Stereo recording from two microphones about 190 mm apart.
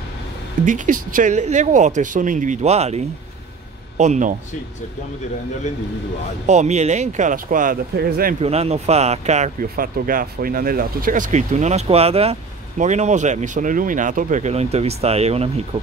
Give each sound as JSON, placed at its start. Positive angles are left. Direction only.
{"t": 0.7, "sound": "speech", "side_deg": -45}
{"t": 4.0, "sound": "speech", "side_deg": -40}
{"t": 6.4, "sound": "speech", "side_deg": -35}
{"t": 8.4, "sound": "speech", "side_deg": -35}